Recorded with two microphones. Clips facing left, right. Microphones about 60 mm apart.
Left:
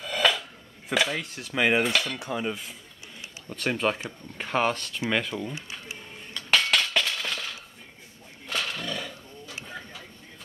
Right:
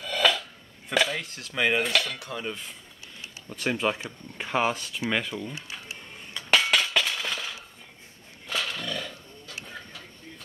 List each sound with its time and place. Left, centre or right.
0.0 s dishes: centre
2.1 s dishes: centre
2.4 s speech: centre
5.0 s cutlery: centre
8.5 s a sound: centre